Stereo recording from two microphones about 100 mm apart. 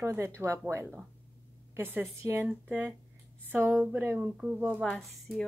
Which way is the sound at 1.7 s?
25° right (ahead or behind).